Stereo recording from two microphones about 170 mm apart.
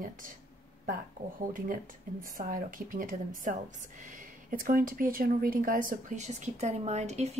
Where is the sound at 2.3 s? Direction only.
55° right (ahead or behind).